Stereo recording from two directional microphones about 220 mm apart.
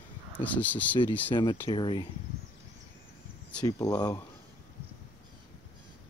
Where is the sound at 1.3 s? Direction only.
20° left (ahead or behind).